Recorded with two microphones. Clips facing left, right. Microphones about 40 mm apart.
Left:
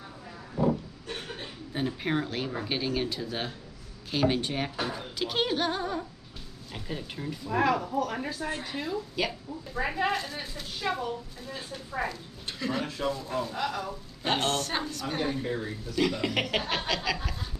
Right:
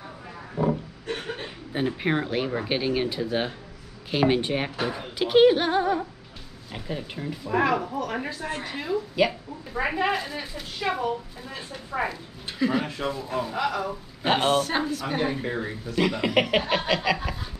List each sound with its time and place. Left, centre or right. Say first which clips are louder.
0.6 s speech: right 2 dB; right; by 9.3 s centre
9.8 s speech: right 4 dB; right
10.8 s a woman's voice: right 5 dB; right
12.1 s speech: right 2 dB; centre
15.4 s a woman's voice: right 3 dB; right
16.0 s speech: right 5 dB; centre